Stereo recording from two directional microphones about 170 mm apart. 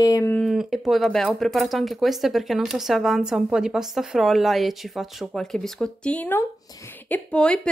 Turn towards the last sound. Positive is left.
turn(degrees=5)  # may be behind; listen again after turning